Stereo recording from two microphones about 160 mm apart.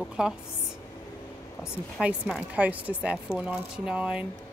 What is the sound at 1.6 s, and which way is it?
Speech, 5° right (ahead or behind).